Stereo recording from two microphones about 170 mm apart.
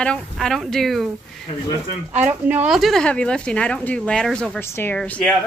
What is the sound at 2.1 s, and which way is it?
Speech, 45° right (ahead or behind).